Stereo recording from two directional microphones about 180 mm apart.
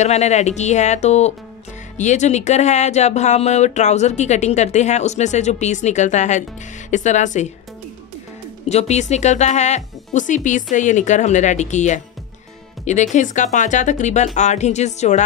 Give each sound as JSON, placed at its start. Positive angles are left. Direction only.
{"t": 0.0, "sound": "speech", "side_deg": 40}
{"t": 8.6, "sound": "speech", "side_deg": 40}